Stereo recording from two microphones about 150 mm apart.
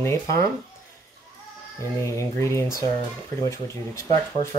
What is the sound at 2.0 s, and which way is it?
A child's voice, 20° left (ahead or behind).